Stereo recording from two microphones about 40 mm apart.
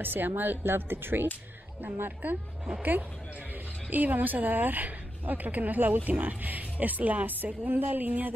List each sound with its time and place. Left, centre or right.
0.0 s a woman's voice: right
3.9 s a woman's voice: right
7.6 s a woman's voice: right